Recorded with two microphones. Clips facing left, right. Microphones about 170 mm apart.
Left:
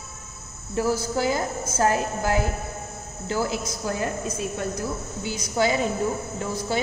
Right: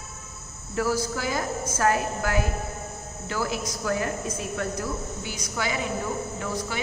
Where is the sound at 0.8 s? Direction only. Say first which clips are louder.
Left 3 dB; 25° left (ahead or behind).